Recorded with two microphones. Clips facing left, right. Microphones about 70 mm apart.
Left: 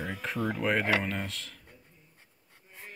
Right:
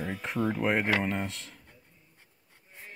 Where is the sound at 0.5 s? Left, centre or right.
Right.